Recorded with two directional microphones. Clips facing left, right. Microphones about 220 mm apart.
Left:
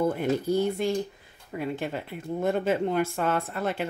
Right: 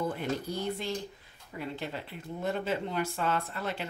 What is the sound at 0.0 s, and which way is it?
Speech, 50° left (ahead or behind).